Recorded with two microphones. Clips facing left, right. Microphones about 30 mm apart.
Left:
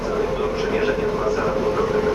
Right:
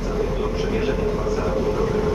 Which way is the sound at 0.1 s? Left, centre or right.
Centre.